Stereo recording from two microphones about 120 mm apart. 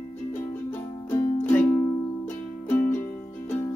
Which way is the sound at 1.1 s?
10° left (ahead or behind).